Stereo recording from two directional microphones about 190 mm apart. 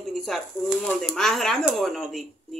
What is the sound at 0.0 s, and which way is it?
Speech, centre (ahead or behind).